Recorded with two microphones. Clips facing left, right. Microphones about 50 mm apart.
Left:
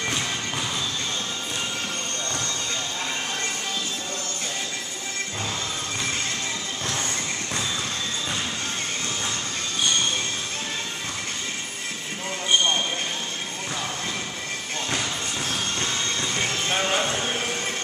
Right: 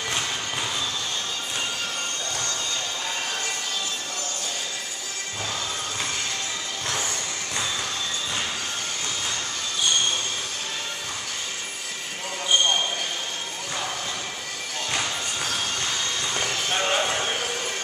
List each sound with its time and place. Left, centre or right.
16.3 s clip-clop: left
16.7 s music: centre